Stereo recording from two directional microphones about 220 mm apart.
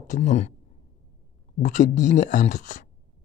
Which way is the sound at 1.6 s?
35° left (ahead or behind).